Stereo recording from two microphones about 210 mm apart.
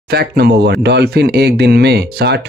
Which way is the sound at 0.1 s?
50° right (ahead or behind).